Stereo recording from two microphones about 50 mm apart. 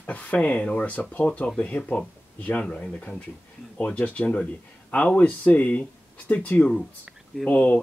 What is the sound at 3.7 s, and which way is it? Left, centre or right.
Speech, left.